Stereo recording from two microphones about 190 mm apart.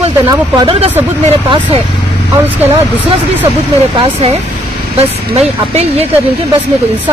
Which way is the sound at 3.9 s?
30° right (ahead or behind).